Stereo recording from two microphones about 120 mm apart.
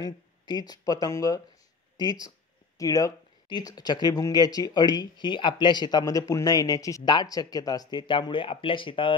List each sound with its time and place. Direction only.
0.0 s speech: 35° left (ahead or behind)